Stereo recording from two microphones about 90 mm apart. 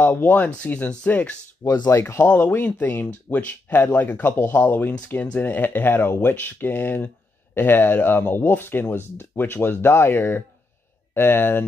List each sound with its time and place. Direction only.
0.0 s speech: 20° left (ahead or behind)
1.9 s speech: 35° left (ahead or behind)
2.2 s speech: 20° left (ahead or behind)